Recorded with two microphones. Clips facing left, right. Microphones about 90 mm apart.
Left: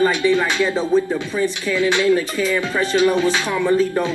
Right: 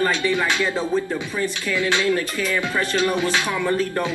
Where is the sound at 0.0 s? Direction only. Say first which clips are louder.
Left 4 dB; 15° left (ahead or behind).